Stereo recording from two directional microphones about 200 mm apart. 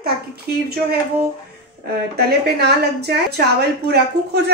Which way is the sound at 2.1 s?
55° right (ahead or behind).